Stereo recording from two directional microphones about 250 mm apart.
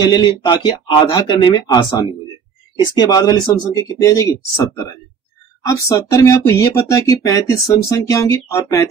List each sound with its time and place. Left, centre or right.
0.0 s speech: centre
5.7 s speech: centre